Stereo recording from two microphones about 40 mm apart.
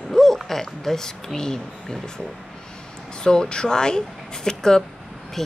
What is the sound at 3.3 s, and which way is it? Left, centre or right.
Speech, centre.